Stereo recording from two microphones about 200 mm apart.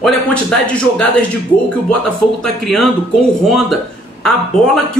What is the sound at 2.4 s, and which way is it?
Speech, centre (ahead or behind).